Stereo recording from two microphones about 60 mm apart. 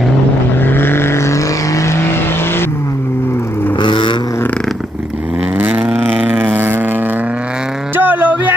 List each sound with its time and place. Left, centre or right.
0.6 s vehicle: left
5.6 s vehicle: right
6.3 s vehicle: right
7.9 s a sound: right